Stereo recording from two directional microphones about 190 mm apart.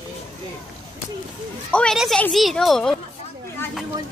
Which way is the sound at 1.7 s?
5° left (ahead or behind).